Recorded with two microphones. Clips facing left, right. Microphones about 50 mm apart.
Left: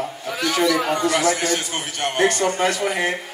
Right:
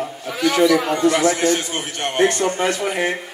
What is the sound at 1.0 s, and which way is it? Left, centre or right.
A man's voice, right.